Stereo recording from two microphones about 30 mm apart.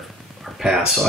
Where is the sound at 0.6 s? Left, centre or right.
Right.